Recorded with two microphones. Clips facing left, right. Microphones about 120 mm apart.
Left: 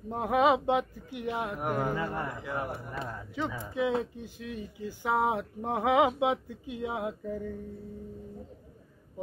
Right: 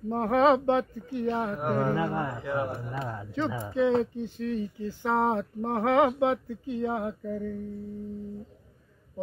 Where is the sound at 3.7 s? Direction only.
10° left (ahead or behind).